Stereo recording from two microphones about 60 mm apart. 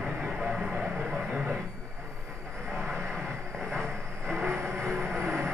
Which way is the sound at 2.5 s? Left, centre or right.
Centre.